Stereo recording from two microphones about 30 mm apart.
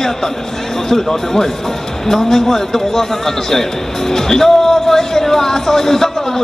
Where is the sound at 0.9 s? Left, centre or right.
Centre.